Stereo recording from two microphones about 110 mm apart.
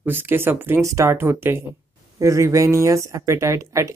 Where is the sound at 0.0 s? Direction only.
20° right (ahead or behind).